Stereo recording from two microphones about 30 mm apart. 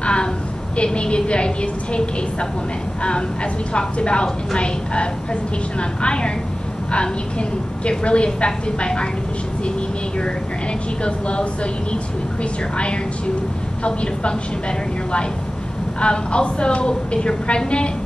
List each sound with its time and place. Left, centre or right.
0.0 s a sound: left
0.9 s a woman's voice: left
9.8 s vehicle: left
11.1 s a woman's voice: left
16.0 s a woman's voice: left